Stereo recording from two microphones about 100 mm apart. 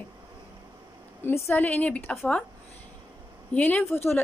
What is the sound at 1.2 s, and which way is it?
A woman's voice, 20° left (ahead or behind).